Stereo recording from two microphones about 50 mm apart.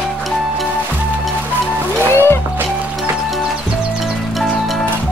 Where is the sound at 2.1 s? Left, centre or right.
Left.